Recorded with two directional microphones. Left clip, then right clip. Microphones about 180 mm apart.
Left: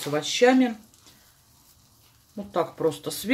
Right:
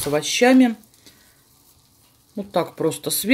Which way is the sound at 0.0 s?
50° right (ahead or behind).